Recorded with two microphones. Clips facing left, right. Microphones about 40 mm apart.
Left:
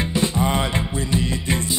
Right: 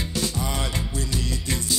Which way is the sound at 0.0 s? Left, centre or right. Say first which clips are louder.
Left 7 dB; left.